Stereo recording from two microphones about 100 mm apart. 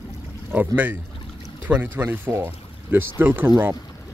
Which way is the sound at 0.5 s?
15° right (ahead or behind).